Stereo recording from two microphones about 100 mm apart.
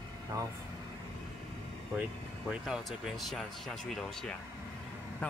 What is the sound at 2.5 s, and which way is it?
Speech, 5° right (ahead or behind).